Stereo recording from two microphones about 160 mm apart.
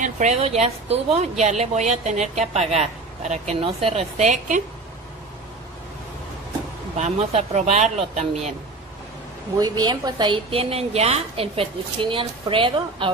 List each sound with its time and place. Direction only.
0.0 s a woman's voice: 45° right (ahead or behind)
7.0 s a woman's voice: 45° right (ahead or behind)
9.6 s a woman's voice: 25° right (ahead or behind)